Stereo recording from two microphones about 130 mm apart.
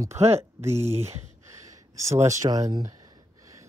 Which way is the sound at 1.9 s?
20° right (ahead or behind).